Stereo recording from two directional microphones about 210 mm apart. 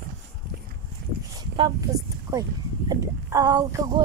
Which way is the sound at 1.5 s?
20° right (ahead or behind).